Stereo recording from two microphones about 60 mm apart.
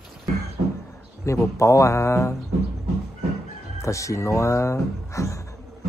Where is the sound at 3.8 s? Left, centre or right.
Left.